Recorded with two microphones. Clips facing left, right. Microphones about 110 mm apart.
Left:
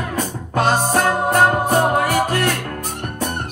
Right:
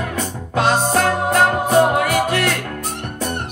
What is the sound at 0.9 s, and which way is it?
Music, 45° left (ahead or behind).